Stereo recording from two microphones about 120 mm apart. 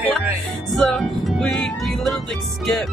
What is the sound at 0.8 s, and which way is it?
Music, 5° left (ahead or behind).